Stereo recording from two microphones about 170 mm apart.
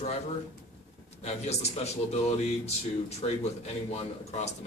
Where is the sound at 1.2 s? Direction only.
40° left (ahead or behind).